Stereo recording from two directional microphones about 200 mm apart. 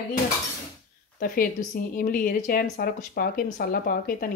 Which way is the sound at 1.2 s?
45° left (ahead or behind).